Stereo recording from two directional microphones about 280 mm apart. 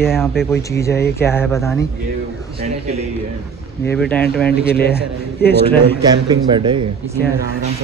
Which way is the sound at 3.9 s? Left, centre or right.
Centre.